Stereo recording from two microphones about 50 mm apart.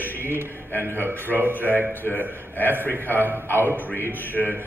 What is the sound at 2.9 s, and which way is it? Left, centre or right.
Speech, right.